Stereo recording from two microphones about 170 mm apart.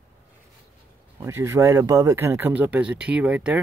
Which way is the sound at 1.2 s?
15° right (ahead or behind).